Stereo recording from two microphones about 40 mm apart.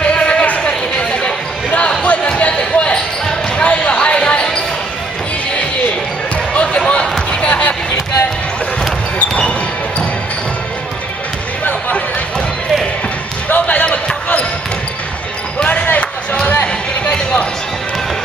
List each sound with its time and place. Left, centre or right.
0.0 s a sound: left
1.8 s basketball bounce: left
6.5 s basketball bounce: left
13.5 s basketball bounce: left
15.6 s basketball bounce: left
16.6 s a sound: left